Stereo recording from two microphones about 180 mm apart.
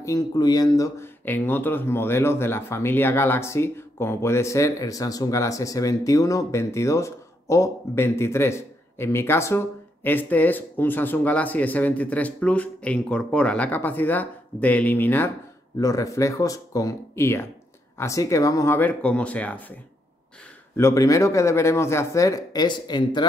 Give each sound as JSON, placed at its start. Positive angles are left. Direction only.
{"t": 0.0, "sound": "speech", "side_deg": 20}
{"t": 20.7, "sound": "speech", "side_deg": 15}